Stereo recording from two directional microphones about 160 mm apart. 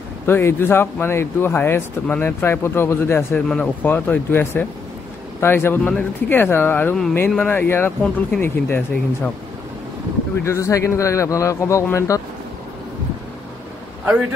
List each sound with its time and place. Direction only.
0.3 s speech: 15° left (ahead or behind)
10.4 s a man's voice: 20° left (ahead or behind)